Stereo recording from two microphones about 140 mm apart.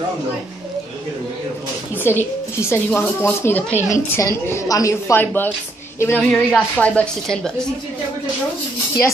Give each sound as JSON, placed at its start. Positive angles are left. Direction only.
{"t": 2.0, "sound": "a woman's voice", "side_deg": 20}